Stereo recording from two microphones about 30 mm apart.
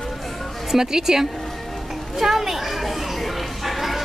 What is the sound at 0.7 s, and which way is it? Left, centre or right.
Speech, centre.